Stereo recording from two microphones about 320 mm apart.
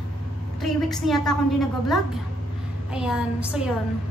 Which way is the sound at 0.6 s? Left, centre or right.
Centre.